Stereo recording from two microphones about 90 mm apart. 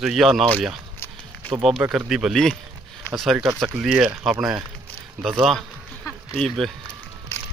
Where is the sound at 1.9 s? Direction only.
5° right (ahead or behind).